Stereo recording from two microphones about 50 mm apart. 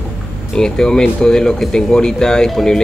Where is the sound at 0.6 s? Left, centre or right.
Centre.